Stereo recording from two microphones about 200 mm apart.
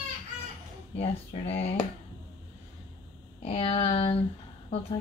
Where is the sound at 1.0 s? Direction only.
30° left (ahead or behind).